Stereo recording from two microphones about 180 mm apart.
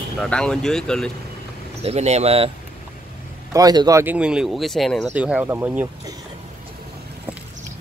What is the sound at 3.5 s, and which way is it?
Speech, 20° right (ahead or behind).